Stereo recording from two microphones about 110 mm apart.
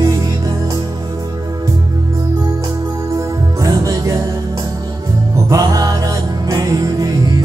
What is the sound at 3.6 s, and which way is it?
Music, 35° right (ahead or behind).